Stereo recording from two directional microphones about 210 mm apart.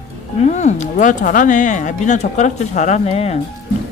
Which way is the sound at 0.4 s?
35° left (ahead or behind).